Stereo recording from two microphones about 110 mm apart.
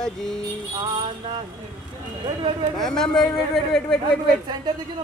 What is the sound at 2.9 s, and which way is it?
A man's voice, 5° left (ahead or behind).